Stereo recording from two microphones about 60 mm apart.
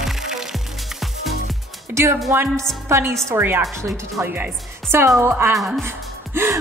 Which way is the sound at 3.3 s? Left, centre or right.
Right.